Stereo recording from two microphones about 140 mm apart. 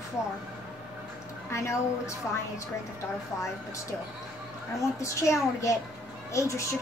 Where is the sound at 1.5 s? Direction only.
20° left (ahead or behind).